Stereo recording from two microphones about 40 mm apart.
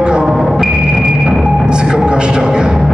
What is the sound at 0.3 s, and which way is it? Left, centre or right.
Music, centre.